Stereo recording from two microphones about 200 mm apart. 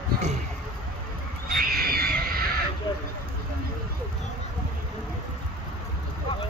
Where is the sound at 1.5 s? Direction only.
50° right (ahead or behind).